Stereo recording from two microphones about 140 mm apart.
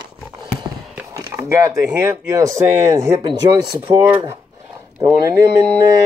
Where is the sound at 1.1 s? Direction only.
20° right (ahead or behind).